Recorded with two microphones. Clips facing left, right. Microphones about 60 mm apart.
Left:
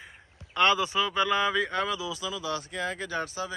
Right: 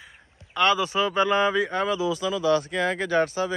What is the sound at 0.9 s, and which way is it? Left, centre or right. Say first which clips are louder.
Speech: right 4 dB; right.